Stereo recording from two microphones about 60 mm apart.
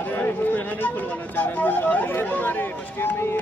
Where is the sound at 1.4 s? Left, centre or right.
Left.